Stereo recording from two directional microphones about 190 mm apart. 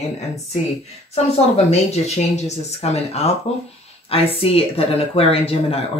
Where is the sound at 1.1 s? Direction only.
35° left (ahead or behind).